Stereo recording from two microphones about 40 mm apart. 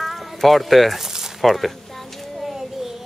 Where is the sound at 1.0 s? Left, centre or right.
Centre.